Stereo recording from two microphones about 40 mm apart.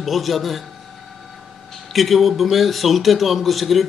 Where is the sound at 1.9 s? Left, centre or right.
Centre.